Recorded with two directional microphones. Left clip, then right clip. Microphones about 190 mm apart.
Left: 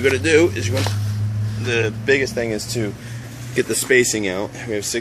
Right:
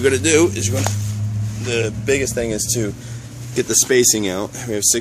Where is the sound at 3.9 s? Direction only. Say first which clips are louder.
Left 1 dB; 30° right (ahead or behind).